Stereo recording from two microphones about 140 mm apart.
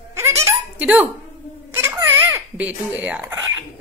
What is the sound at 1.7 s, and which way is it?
A child's voice, 15° right (ahead or behind).